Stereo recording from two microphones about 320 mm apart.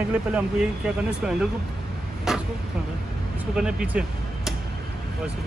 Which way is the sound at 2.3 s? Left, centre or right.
Centre.